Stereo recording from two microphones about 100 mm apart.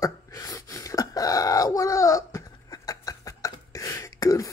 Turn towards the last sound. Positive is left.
turn(degrees=35)  # may be behind; listen again after turning